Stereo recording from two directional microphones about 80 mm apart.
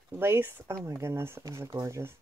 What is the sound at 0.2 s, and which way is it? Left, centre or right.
Speech, right.